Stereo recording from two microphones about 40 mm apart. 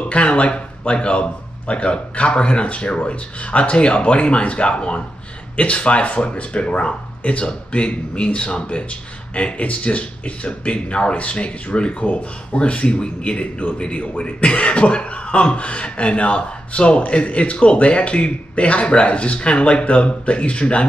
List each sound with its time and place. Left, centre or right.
0.1 s a man's voice: left